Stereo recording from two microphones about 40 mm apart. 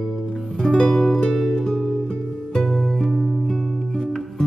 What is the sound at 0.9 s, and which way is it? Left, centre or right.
Music, centre.